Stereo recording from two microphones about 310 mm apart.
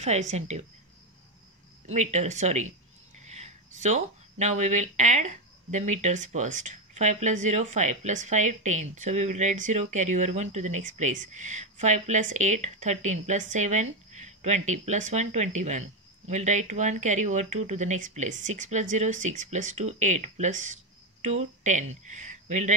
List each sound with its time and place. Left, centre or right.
0.3 s speech: right
2.0 s speech: right